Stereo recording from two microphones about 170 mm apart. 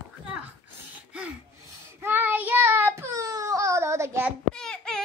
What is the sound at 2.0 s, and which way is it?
Child singing, 15° right (ahead or behind).